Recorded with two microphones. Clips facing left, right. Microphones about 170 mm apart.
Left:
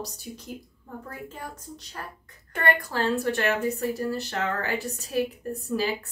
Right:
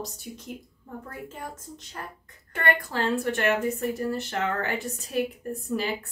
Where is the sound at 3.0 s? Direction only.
20° right (ahead or behind).